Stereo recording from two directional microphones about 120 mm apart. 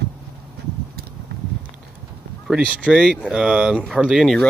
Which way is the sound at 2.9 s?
5° right (ahead or behind).